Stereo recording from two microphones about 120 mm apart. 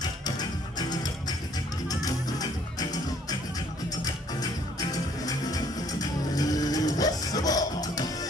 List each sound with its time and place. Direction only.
0.0 s music: 35° left (ahead or behind)